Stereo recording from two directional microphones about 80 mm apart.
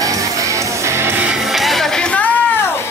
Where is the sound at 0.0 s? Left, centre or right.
Right.